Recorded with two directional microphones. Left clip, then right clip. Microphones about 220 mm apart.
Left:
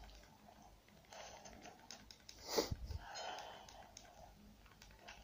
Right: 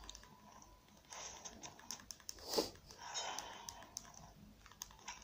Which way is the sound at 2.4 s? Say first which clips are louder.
Even; 10° right (ahead or behind).